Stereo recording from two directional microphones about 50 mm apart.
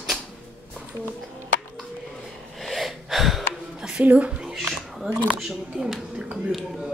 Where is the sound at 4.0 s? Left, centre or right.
Right.